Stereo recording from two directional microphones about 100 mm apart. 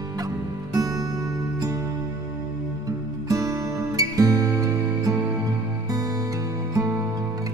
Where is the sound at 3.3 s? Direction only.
35° right (ahead or behind).